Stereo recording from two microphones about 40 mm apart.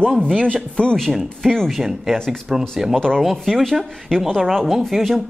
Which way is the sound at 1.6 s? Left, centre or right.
Centre.